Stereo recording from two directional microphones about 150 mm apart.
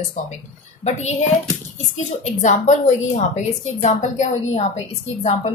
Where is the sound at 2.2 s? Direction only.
50° left (ahead or behind).